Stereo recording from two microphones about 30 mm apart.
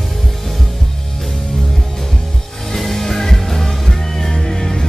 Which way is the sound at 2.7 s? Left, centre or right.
Centre.